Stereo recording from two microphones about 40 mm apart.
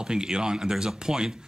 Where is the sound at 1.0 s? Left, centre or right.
Centre.